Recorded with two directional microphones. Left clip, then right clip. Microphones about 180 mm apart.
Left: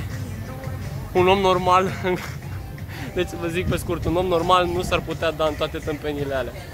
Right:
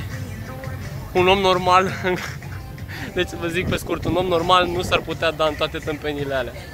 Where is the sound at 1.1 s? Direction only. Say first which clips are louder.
Right 1 dB; 5° left (ahead or behind).